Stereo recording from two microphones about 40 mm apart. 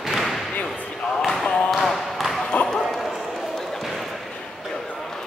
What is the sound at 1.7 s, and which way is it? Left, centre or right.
Basketball bounce, centre.